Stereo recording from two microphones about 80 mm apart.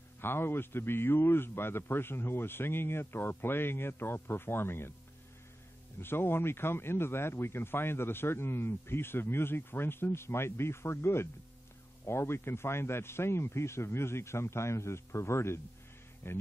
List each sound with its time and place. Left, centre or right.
0.2 s speech: left
5.9 s speech: left